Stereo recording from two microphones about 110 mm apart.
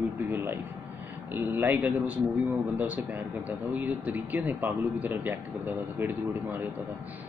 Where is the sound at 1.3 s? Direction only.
20° right (ahead or behind).